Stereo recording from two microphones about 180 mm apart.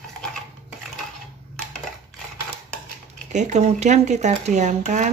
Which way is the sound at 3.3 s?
40° right (ahead or behind).